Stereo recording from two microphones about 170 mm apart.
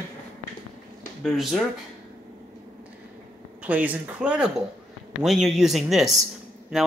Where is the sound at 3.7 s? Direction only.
10° right (ahead or behind).